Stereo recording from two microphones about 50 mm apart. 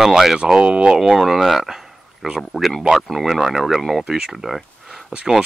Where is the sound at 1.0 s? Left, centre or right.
Centre.